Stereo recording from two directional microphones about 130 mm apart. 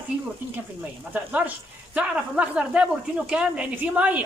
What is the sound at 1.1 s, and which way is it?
Speech, 15° right (ahead or behind).